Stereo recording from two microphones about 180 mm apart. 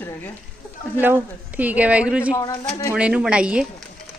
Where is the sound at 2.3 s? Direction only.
20° left (ahead or behind).